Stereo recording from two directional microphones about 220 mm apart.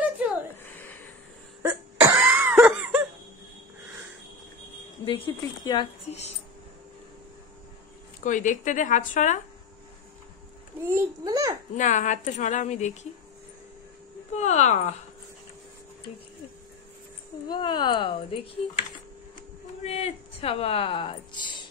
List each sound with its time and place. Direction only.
0.7 s a sound: 10° left (ahead or behind)
1.6 s cough: 10° right (ahead or behind)
5.0 s a woman's voice: 25° left (ahead or behind)
8.2 s speech: 35° left (ahead or behind)
10.9 s a child's voice: 15° right (ahead or behind)
11.7 s speech: 35° left (ahead or behind)
14.3 s speech: 30° left (ahead or behind)
17.5 s a woman's voice: 20° left (ahead or behind)
19.8 s speech: 25° left (ahead or behind)